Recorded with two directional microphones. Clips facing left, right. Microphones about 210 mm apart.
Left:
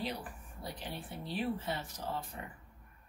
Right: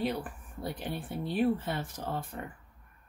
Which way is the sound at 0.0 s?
55° right (ahead or behind).